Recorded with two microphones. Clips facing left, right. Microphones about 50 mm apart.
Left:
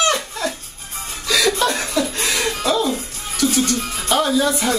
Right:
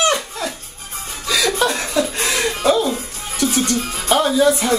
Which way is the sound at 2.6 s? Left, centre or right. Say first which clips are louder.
Right 4 dB; centre.